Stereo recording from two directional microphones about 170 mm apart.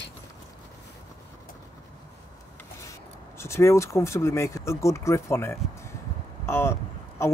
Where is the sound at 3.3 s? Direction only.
15° left (ahead or behind).